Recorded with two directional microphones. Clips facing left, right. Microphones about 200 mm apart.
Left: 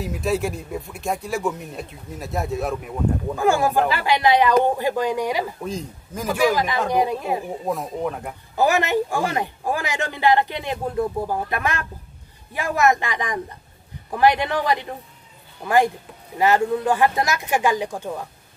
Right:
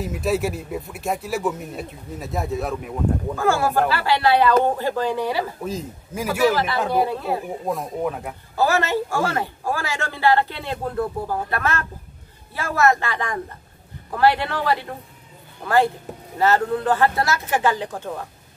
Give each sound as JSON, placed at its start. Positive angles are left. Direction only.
{"t": 0.0, "sound": "speech", "side_deg": 0}
{"t": 3.3, "sound": "speech", "side_deg": 15}
{"t": 5.6, "sound": "speech", "side_deg": -5}
{"t": 6.4, "sound": "speech", "side_deg": 15}
{"t": 7.6, "sound": "speech", "side_deg": 0}
{"t": 8.5, "sound": "speech", "side_deg": 15}